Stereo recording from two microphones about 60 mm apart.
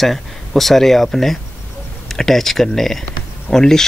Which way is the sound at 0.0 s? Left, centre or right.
Centre.